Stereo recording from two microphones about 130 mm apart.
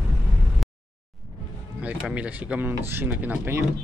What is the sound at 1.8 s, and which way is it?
Speech, 10° right (ahead or behind).